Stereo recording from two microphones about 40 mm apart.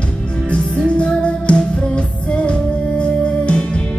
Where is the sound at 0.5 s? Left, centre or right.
Left.